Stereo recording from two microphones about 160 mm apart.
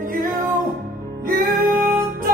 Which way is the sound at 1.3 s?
60° right (ahead or behind).